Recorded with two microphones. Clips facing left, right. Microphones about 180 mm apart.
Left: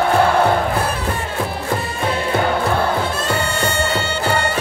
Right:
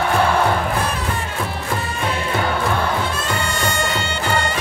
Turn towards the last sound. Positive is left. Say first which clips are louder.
# left 3 dB
turn(degrees=40)  # may be behind; listen again after turning